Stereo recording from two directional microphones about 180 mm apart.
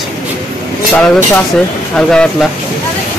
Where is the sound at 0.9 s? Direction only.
10° left (ahead or behind).